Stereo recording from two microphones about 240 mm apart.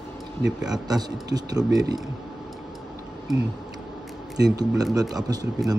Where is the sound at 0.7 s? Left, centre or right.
Centre.